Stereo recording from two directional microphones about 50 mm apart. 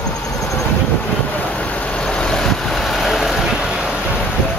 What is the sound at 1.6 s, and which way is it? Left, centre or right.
Vehicle, left.